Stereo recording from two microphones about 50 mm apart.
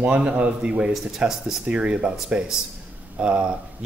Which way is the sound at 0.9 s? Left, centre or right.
Centre.